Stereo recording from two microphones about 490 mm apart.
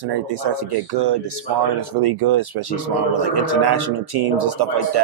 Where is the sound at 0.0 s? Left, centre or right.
Right.